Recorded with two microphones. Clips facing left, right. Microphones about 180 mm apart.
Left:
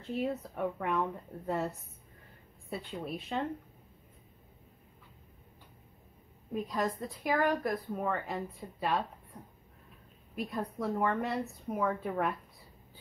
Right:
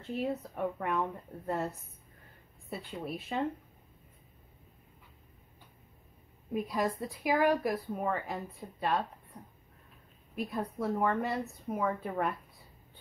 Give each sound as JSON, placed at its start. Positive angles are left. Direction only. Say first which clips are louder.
{"t": 0.0, "sound": "a woman's voice", "louder": "even", "side_deg": 0}
{"t": 6.5, "sound": "a woman's voice", "louder": "right 1 dB", "side_deg": -10}